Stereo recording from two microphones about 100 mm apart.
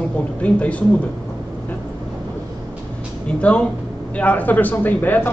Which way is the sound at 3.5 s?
10° left (ahead or behind).